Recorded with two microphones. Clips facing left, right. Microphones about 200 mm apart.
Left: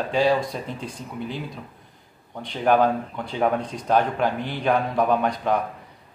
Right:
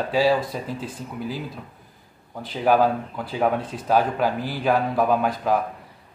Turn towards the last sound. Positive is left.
turn(degrees=-5)  # may be behind; listen again after turning